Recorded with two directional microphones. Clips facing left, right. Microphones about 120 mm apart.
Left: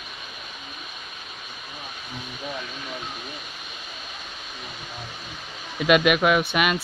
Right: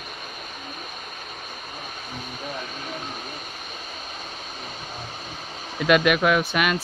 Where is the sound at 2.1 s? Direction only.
45° right (ahead or behind).